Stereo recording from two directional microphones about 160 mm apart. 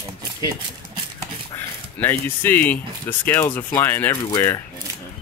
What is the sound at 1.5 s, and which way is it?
Speech, 15° left (ahead or behind).